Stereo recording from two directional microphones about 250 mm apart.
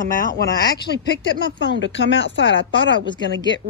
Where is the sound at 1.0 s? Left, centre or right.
Left.